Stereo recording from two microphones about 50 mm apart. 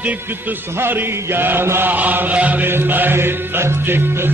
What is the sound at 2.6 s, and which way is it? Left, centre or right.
Music, right.